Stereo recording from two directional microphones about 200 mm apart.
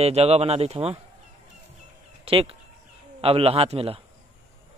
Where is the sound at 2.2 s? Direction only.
25° right (ahead or behind).